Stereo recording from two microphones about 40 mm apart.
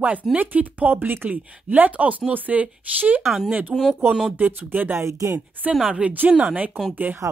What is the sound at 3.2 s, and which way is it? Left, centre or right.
Speech, centre.